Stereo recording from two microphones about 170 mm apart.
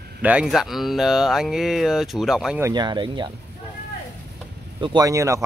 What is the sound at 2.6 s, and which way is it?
Speech, 25° right (ahead or behind).